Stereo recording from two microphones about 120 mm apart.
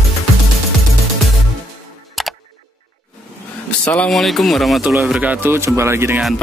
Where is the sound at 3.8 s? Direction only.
10° left (ahead or behind); by 6.2 s 20° right (ahead or behind).